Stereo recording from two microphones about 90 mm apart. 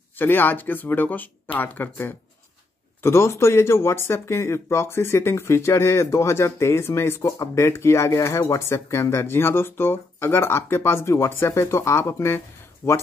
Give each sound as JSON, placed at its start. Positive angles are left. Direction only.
{"t": 0.2, "sound": "speech", "side_deg": 20}